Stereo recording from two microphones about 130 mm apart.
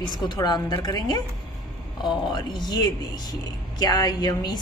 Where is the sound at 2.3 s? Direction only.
35° left (ahead or behind).